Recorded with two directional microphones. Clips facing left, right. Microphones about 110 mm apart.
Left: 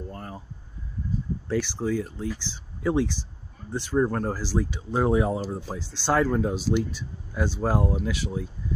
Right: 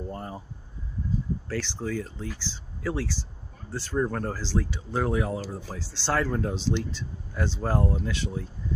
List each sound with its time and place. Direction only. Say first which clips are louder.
0.1 s speech: right 2 dB; 20° right (ahead or behind)
1.5 s speech: left 7 dB; 15° left (ahead or behind)